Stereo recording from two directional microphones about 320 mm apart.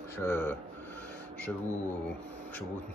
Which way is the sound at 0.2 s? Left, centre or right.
Centre.